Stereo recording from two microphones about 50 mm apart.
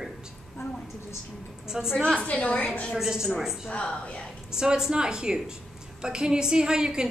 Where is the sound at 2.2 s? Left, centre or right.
Left.